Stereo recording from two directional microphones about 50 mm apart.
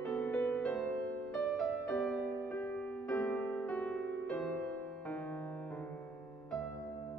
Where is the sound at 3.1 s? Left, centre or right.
Left.